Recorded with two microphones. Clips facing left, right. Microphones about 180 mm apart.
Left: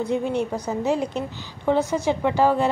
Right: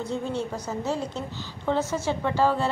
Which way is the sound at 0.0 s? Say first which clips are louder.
Left 6 dB; 15° left (ahead or behind).